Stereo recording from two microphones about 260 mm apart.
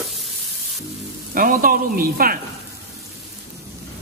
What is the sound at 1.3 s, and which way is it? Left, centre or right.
Speech, right.